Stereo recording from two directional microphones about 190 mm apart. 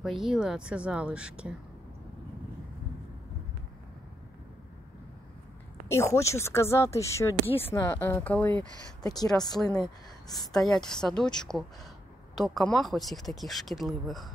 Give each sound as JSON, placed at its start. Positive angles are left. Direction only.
{"t": 0.0, "sound": "speech", "side_deg": 0}
{"t": 5.9, "sound": "speech", "side_deg": 15}
{"t": 9.0, "sound": "speech", "side_deg": 20}
{"t": 9.6, "sound": "speech", "side_deg": 5}